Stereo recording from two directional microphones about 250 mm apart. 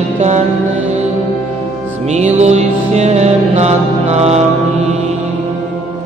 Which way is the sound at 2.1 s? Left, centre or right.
Right.